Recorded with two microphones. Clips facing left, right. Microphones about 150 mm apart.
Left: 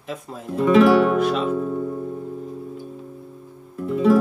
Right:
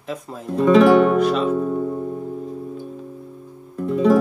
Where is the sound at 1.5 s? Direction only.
40° right (ahead or behind).